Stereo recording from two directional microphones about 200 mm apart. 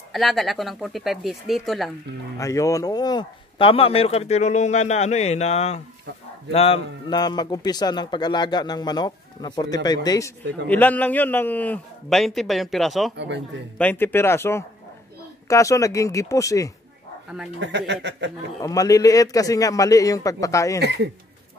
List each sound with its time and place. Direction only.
0.1 s speech: centre (ahead or behind)
2.3 s a man's voice: 15° left (ahead or behind); by 13.1 s centre (ahead or behind)
13.1 s speech: 60° right (ahead or behind)
13.7 s a man's voice: 10° left (ahead or behind)
17.6 s speech: 60° right (ahead or behind)
18.6 s a man's voice: 15° left (ahead or behind)